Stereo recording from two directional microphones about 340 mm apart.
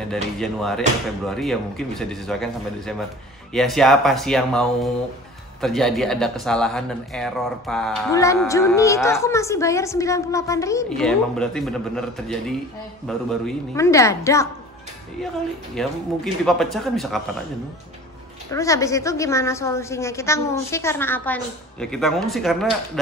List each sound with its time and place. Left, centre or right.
0.1 s a woman's voice: centre
15.8 s speech: centre
18.5 s a woman's voice: centre